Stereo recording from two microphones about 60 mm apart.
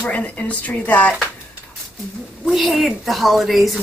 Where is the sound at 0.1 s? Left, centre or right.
Left.